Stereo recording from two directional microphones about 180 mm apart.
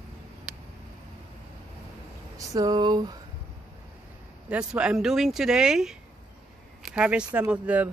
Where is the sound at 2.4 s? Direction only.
20° right (ahead or behind).